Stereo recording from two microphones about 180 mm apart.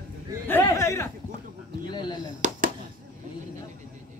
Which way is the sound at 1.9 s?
25° left (ahead or behind).